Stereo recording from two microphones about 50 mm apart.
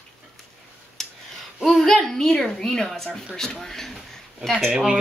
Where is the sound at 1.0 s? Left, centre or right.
Centre.